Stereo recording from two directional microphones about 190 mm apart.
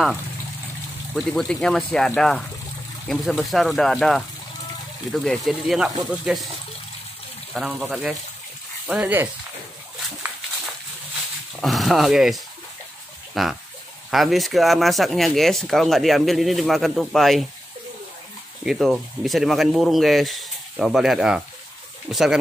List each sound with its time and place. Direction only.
1.1 s speech: centre (ahead or behind)
7.5 s speech: centre (ahead or behind)
11.6 s speech: centre (ahead or behind)
13.3 s a sound: centre (ahead or behind)
14.1 s speech: centre (ahead or behind)
18.7 s speech: centre (ahead or behind)